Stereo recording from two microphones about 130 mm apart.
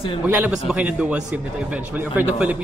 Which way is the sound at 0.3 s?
10° right (ahead or behind).